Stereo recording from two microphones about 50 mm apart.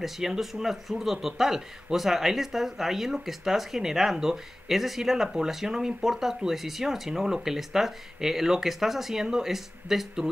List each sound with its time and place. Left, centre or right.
0.0 s speech: centre